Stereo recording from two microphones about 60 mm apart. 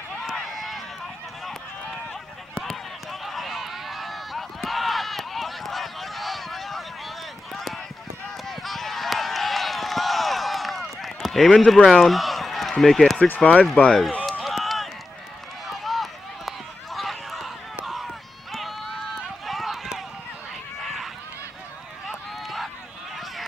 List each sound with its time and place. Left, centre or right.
0.3 s run: centre
2.5 s run: centre
8.5 s a sound: centre
13.2 s speech: centre
14.4 s run: centre
18.5 s run: centre
20.8 s a sound: centre
22.0 s run: centre